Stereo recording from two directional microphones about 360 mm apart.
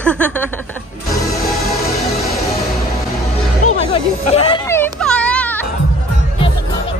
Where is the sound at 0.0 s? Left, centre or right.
Centre.